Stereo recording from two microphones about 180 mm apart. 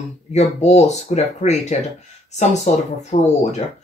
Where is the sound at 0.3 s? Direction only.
40° left (ahead or behind).